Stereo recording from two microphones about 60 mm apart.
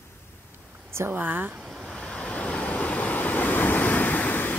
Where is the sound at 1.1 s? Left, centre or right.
Right.